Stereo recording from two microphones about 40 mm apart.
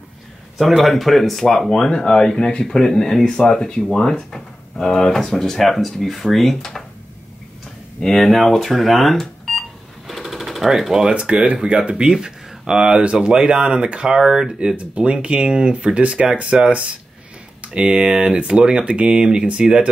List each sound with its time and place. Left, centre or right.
0.6 s speech: centre
1.9 s speech: centre
8.0 s speech: centre
8.4 s telephone dialing: centre
11.1 s speech: right
13.0 s speech: right
13.4 s speech: centre
14.1 s speech: centre
14.8 s speech: right